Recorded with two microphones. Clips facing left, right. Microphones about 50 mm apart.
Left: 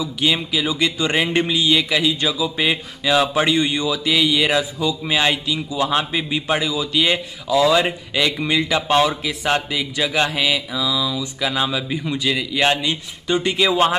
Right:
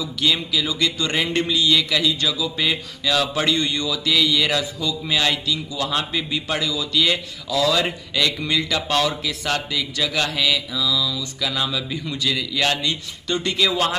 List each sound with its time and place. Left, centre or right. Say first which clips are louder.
0.0 s speech: left 2 dB; left